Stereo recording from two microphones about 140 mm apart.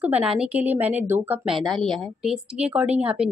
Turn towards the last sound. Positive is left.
turn(degrees=-10)  # may be behind; listen again after turning